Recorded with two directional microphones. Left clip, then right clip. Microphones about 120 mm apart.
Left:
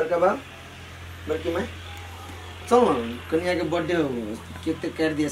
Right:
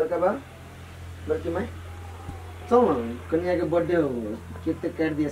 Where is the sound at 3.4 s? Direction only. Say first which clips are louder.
Right 3 dB; 15° left (ahead or behind).